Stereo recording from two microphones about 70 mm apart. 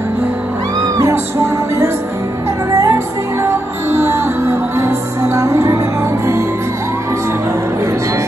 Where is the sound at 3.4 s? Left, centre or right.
Right.